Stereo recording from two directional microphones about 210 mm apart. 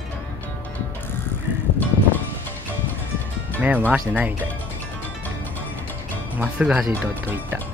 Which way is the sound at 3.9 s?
5° right (ahead or behind).